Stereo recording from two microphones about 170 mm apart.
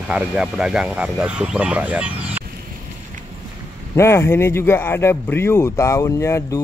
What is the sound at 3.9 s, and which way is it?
Speech, 15° left (ahead or behind).